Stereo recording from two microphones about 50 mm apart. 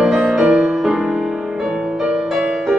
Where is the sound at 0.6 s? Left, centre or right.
Centre.